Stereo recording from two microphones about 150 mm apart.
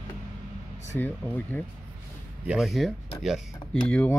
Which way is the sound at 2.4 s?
5° right (ahead or behind).